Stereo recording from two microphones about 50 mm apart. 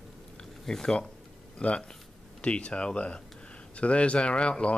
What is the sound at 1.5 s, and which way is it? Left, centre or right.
Speech, left.